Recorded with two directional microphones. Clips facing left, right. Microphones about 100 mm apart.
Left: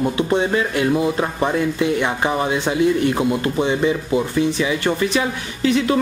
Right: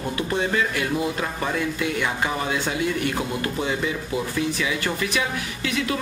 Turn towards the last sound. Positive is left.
turn(degrees=30)  # may be behind; listen again after turning